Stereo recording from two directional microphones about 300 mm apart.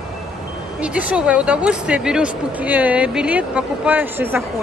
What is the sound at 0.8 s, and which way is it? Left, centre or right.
Speech, centre.